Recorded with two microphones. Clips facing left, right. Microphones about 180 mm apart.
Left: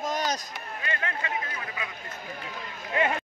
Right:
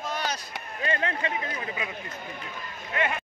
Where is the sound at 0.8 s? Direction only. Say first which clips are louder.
Right 5 dB; 30° right (ahead or behind).